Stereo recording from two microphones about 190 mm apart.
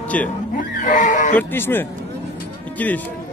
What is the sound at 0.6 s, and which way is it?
Neigh, 45° left (ahead or behind).